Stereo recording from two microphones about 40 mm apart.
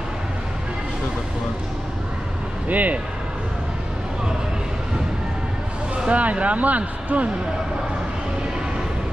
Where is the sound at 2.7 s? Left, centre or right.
Right.